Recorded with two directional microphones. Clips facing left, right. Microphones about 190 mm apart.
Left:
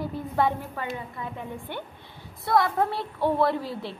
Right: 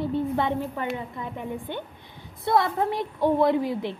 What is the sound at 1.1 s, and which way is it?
A woman's voice, 20° right (ahead or behind).